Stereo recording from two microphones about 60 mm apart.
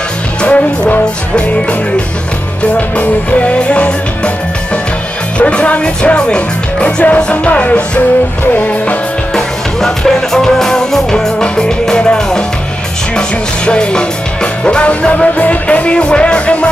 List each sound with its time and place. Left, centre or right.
0.4 s music: left
3.0 s music: left
5.4 s music: left
9.3 s music: centre
13.7 s music: centre